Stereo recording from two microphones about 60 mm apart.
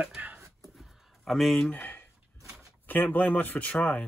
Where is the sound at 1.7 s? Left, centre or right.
Left.